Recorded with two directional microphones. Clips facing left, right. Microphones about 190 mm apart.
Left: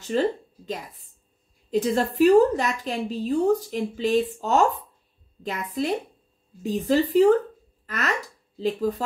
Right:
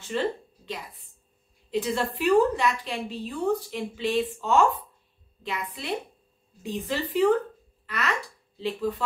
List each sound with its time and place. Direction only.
0.0 s a woman's voice: 40° left (ahead or behind)